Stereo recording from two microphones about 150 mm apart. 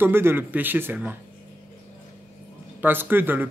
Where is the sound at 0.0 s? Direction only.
15° right (ahead or behind).